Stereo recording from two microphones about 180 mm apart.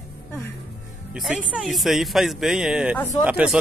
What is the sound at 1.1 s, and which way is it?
Speech, 5° right (ahead or behind).